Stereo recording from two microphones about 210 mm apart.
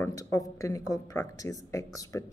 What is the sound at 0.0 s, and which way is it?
Speech, 15° left (ahead or behind).